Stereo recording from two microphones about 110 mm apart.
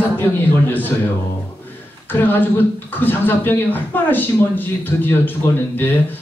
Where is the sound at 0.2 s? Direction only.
15° left (ahead or behind).